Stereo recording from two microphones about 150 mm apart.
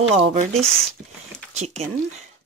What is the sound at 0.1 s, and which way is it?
Speech, 45° right (ahead or behind).